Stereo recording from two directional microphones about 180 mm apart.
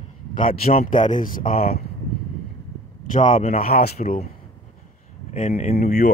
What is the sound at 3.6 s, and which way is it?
Speech, 60° left (ahead or behind).